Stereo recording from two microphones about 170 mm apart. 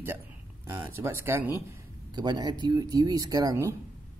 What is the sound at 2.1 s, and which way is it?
Speech, 25° right (ahead or behind).